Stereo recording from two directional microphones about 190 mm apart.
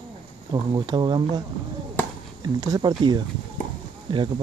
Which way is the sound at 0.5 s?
20° right (ahead or behind).